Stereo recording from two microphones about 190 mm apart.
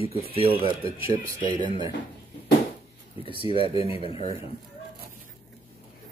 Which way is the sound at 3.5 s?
30° left (ahead or behind).